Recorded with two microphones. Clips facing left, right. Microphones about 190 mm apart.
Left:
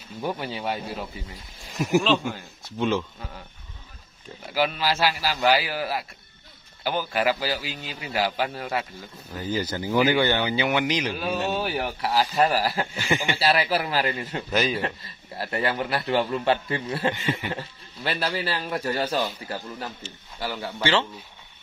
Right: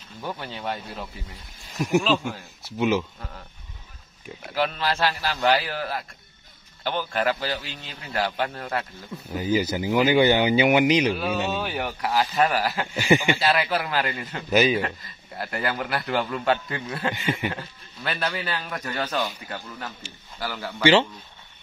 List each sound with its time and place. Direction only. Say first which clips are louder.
0.2 s a man's voice: left 3 dB; 10° left (ahead or behind); by 3.1 s 10° right (ahead or behind)
4.6 s a man's voice: left 1 dB; 5° left (ahead or behind)
9.3 s a man's voice: right 4 dB; 10° right (ahead or behind)
11.3 s speech: left 1 dB; centre (ahead or behind)
12.4 s speech: left 1 dB; 35° left (ahead or behind)
12.9 s a man's voice: right 6 dB; 10° right (ahead or behind)
13.4 s speech: left 1 dB; 30° left (ahead or behind)
14.5 s speech: right 5 dB; 5° right (ahead or behind)
15.3 s a man's voice: left 2 dB; 30° left (ahead or behind)
20.3 s speech: left 1 dB; centre (ahead or behind)